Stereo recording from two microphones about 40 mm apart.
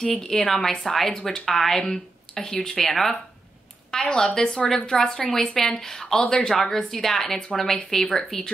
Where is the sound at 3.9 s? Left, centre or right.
Left.